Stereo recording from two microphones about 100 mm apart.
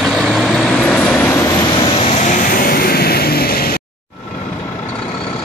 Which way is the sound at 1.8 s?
60° left (ahead or behind).